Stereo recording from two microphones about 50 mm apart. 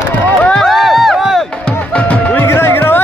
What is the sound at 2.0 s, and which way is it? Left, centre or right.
Music, left.